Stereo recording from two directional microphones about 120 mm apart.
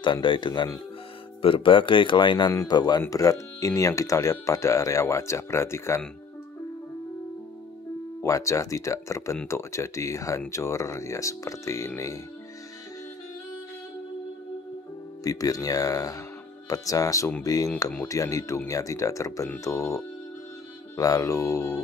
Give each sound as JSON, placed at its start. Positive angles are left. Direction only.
{"t": 0.0, "sound": "a man's voice", "side_deg": 40}
{"t": 8.2, "sound": "speech", "side_deg": 25}
{"t": 15.2, "sound": "speech", "side_deg": 30}